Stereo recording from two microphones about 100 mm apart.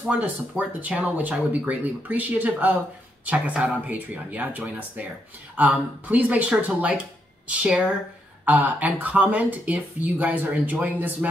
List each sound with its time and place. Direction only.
0.0 s speech: 10° right (ahead or behind)